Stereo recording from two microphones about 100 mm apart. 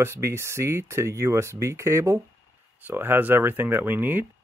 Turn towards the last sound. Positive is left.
turn(degrees=-20)  # may be behind; listen again after turning